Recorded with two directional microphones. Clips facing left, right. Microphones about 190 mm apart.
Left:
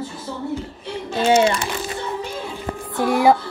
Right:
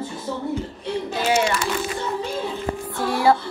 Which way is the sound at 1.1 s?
30° left (ahead or behind).